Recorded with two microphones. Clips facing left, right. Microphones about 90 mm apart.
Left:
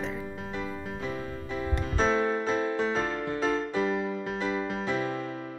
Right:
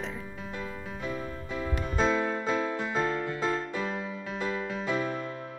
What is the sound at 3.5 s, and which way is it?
Music, 20° left (ahead or behind).